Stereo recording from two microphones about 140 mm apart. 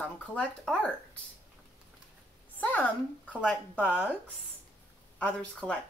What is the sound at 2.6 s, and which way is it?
Speech, 10° left (ahead or behind).